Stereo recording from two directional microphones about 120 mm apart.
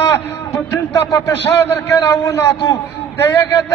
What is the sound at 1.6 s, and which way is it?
A man's voice, 20° left (ahead or behind).